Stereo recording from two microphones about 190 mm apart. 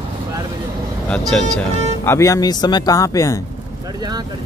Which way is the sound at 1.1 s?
5° left (ahead or behind).